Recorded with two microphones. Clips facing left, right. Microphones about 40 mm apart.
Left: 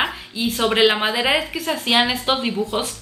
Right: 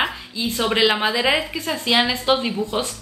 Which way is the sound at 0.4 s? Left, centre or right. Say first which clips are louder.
Left 2 dB; centre.